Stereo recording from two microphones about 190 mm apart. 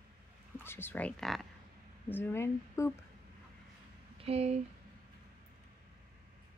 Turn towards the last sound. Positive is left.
turn(degrees=-35)  # may be behind; listen again after turning